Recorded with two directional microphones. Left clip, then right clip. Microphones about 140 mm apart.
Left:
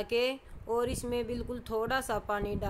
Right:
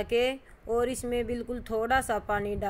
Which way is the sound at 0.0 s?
5° right (ahead or behind).